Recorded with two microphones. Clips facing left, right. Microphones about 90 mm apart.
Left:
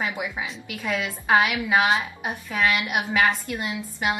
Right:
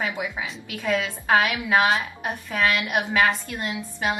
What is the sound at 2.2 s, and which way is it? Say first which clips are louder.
A woman's voice: even; 15° left (ahead or behind).